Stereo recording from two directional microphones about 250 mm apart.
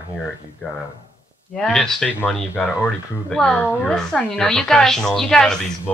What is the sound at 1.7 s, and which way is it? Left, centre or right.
A woman's voice, centre.